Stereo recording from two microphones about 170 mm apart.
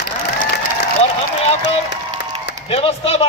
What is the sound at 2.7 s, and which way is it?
Speech, 35° left (ahead or behind).